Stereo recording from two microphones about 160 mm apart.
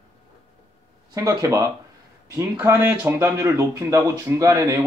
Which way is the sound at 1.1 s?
20° right (ahead or behind).